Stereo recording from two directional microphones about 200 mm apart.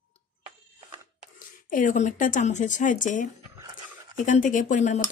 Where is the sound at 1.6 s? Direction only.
40° left (ahead or behind).